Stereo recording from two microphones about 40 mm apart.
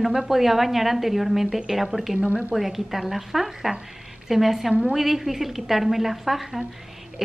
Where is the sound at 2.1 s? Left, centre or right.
Right.